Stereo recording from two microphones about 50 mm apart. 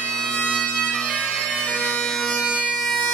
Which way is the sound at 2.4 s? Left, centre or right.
Right.